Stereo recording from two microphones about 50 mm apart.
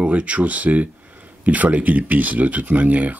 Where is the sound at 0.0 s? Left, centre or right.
Right.